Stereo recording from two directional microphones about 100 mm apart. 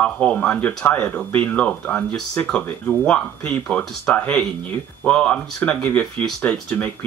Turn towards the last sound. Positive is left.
turn(degrees=15)  # may be behind; listen again after turning